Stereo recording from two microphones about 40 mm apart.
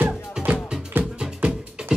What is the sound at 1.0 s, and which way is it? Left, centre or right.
Music, right.